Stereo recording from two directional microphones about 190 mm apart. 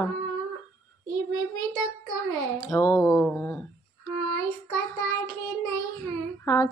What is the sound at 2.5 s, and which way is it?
Speech, 20° left (ahead or behind).